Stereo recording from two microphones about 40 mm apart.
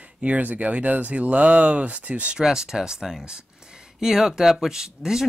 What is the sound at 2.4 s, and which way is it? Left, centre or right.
Speech, centre.